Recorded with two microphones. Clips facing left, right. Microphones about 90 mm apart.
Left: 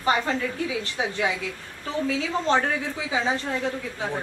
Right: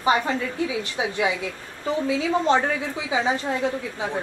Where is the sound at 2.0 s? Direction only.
15° right (ahead or behind).